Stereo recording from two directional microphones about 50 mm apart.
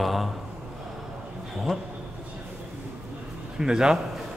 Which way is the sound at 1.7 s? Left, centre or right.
Centre.